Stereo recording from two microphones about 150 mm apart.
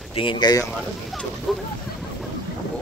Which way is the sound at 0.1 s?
35° left (ahead or behind).